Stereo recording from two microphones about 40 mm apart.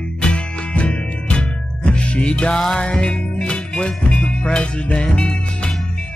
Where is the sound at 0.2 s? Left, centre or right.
Left.